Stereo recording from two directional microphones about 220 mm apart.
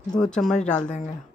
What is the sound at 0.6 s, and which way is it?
Speech, 35° left (ahead or behind).